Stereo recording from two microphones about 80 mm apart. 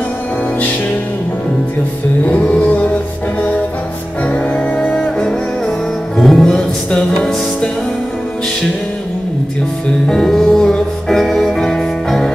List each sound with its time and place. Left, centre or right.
2.2 s music: centre
10.0 s music: centre